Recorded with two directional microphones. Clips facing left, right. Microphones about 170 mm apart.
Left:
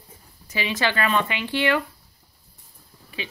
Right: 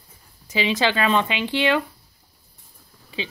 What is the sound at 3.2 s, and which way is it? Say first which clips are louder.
Speech: right 4 dB; 20° right (ahead or behind).